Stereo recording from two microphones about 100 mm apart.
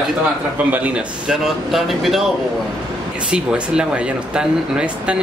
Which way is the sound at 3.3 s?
10° right (ahead or behind).